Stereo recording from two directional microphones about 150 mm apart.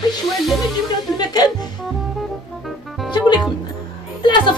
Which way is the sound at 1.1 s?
25° left (ahead or behind).